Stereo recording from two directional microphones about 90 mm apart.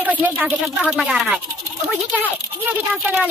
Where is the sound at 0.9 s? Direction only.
5° right (ahead or behind).